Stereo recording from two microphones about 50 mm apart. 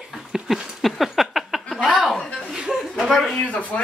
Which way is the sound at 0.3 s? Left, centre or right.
Centre.